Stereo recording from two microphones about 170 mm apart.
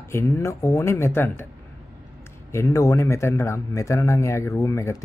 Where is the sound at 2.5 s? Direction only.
15° left (ahead or behind).